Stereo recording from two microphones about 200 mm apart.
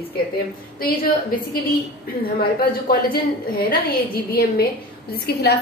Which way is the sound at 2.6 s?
45° left (ahead or behind).